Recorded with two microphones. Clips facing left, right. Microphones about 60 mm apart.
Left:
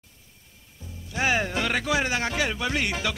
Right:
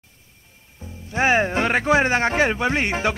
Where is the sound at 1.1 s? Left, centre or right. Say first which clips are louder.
Right 6 dB; right.